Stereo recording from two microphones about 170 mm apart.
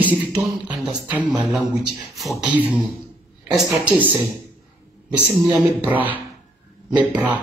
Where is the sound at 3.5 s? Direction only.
25° right (ahead or behind).